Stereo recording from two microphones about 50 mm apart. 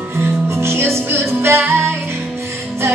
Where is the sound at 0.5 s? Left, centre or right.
Right.